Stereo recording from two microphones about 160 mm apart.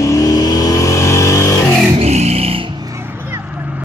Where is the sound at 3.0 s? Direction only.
15° right (ahead or behind).